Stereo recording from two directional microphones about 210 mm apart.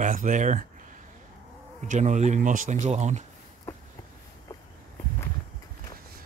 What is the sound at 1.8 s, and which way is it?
Speech, 35° right (ahead or behind).